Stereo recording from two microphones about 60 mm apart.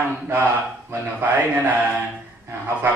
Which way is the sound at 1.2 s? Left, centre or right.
Right.